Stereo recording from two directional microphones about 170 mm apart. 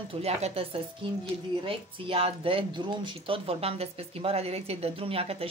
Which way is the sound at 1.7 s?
35° right (ahead or behind).